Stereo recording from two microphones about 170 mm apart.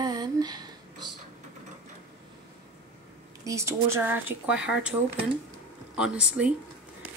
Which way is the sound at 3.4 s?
15° right (ahead or behind).